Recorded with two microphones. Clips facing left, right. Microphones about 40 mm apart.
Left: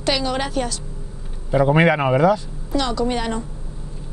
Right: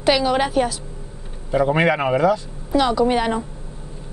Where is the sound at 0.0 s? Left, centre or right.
Centre.